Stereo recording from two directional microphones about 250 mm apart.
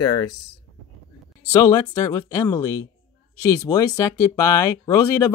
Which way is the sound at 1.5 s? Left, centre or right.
Centre.